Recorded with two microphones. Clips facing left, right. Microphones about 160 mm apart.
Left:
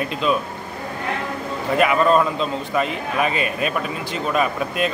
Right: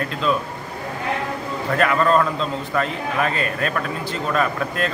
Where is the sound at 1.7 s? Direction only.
15° left (ahead or behind).